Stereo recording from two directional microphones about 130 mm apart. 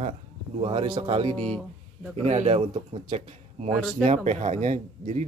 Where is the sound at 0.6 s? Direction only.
45° right (ahead or behind).